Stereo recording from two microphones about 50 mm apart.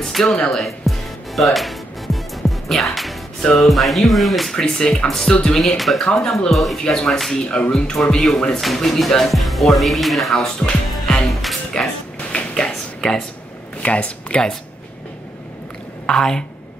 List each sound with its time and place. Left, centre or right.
0.0 s speech: centre
0.5 s music: centre
3.5 s speech: centre
4.6 s speech: centre
6.0 s speech: centre
6.5 s speech: centre
6.8 s speech: centre
7.3 s speech: left; by 10.5 s centre
10.6 s music: centre
11.7 s speech: centre
12.2 s tap: left
12.5 s a sound: centre
13.8 s speech: left
16.1 s speech: centre